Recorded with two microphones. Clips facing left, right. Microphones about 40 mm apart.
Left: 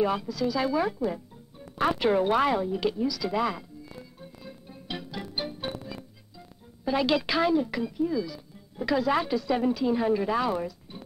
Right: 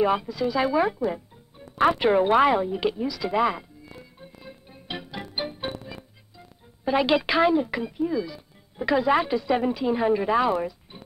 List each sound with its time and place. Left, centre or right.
0.0 s speech: right